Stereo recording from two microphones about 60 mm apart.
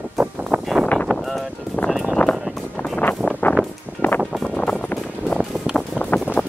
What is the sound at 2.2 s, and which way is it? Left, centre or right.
Music, left.